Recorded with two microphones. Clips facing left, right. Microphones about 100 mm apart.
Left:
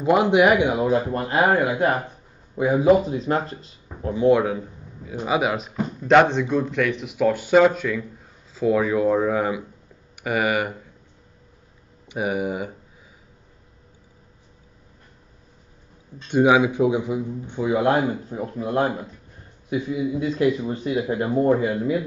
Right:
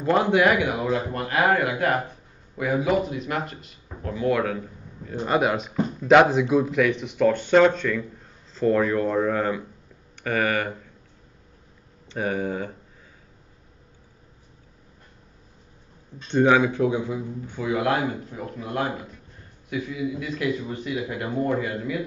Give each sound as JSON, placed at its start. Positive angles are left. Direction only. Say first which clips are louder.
{"t": 0.0, "sound": "a man's voice", "louder": "left 3 dB", "side_deg": 15}
{"t": 5.0, "sound": "speech", "louder": "even", "side_deg": 5}
{"t": 12.1, "sound": "speech", "louder": "left 2 dB", "side_deg": 15}
{"t": 16.3, "sound": "a man's voice", "louder": "left 2 dB", "side_deg": 10}